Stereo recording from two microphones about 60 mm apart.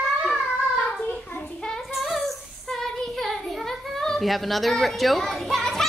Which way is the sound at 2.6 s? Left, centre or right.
Centre.